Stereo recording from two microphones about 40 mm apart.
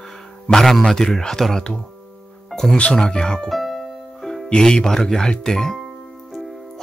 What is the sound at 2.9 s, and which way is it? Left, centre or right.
Speech, centre.